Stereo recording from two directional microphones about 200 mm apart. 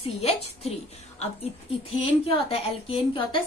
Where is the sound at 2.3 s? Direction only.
30° left (ahead or behind).